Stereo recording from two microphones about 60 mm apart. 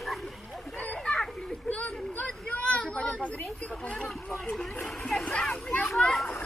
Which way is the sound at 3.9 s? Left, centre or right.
Left.